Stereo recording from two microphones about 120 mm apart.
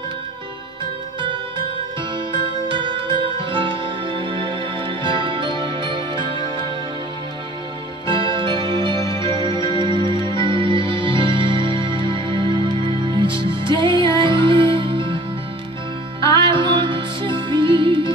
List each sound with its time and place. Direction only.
2.3 s music: 45° right (ahead or behind)
8.1 s music: 45° right (ahead or behind)
16.3 s music: 40° right (ahead or behind)